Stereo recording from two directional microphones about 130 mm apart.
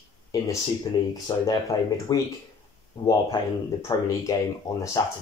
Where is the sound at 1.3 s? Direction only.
30° left (ahead or behind).